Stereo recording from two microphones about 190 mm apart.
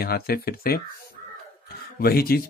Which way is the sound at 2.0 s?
55° left (ahead or behind).